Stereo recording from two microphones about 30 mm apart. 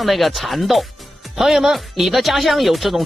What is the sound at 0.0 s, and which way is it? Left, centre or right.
Speech, centre.